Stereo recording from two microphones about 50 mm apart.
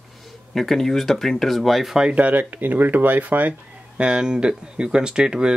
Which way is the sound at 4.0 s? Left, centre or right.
Centre.